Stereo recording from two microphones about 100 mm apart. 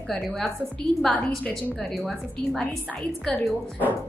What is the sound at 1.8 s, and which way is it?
A woman's voice, centre (ahead or behind).